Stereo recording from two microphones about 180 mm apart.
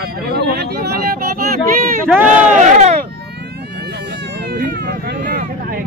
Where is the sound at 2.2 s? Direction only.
40° right (ahead or behind).